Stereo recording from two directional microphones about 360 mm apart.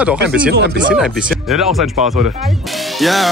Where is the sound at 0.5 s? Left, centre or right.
Right.